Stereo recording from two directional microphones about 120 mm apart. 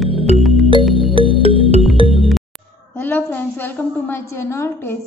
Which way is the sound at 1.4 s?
55° right (ahead or behind).